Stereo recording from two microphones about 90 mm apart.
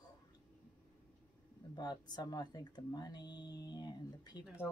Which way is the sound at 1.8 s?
50° left (ahead or behind).